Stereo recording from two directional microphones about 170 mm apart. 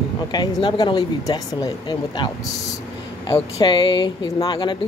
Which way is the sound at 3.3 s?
25° left (ahead or behind).